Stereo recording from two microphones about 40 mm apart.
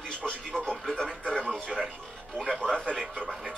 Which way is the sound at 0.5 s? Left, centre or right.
Left.